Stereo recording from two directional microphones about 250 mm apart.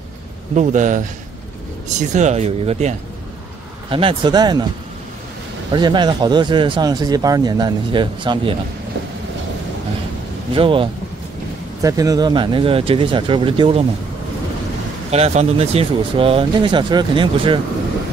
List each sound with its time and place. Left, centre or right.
0.6 s a man's voice: right
5.7 s speech: centre
10.5 s speech: right
15.0 s speech: right